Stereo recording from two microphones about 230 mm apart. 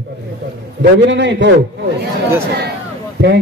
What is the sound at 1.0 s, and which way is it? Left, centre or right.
Speech, right.